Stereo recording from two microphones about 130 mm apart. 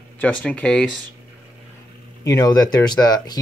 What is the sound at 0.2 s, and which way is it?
Speech, 10° left (ahead or behind).